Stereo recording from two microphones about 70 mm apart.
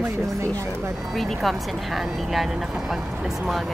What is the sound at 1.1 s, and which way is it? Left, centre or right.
Speech, centre.